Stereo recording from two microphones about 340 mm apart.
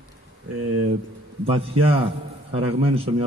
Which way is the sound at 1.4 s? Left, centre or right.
Centre.